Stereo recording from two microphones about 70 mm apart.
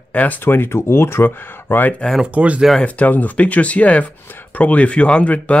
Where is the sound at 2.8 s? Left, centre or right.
Left.